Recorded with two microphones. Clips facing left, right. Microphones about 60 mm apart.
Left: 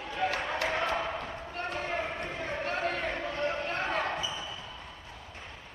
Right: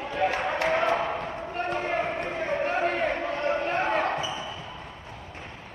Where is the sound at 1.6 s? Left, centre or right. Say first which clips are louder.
Right 5 dB; right.